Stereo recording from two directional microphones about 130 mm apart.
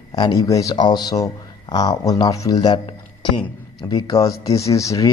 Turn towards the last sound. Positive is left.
turn(degrees=25)  # may be behind; listen again after turning